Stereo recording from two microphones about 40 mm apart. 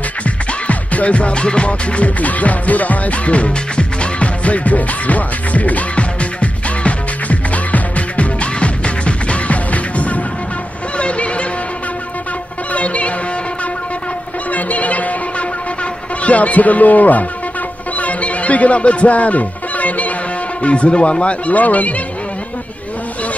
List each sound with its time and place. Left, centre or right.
0.2 s music: left
11.0 s vehicle: left
12.7 s music: left
14.5 s music: left
20.6 s speech: left
21.5 s speech: left